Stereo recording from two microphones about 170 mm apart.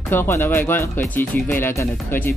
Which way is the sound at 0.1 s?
15° left (ahead or behind).